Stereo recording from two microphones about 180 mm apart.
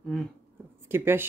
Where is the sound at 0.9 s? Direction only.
10° right (ahead or behind).